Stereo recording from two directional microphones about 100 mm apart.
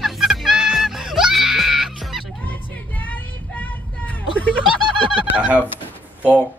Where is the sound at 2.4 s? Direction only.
15° left (ahead or behind).